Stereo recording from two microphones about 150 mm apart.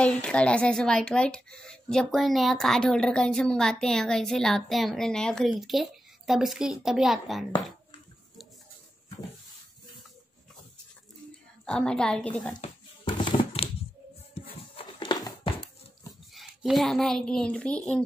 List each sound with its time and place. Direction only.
0.0 s speech: 5° left (ahead or behind)
11.6 s speech: 5° left (ahead or behind)
12.6 s hands: 35° left (ahead or behind)
14.8 s a sound: 30° left (ahead or behind)
16.3 s speech: centre (ahead or behind)